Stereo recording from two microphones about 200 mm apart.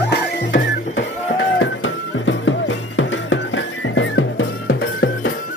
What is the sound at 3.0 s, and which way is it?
Music, 70° left (ahead or behind).